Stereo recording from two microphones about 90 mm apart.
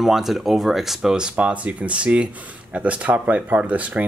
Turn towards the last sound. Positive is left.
turn(degrees=-15)  # may be behind; listen again after turning